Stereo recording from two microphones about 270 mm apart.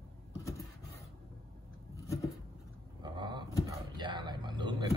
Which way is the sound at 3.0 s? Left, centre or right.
Centre.